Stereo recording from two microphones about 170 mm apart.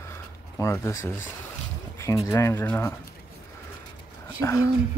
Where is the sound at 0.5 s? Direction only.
15° left (ahead or behind).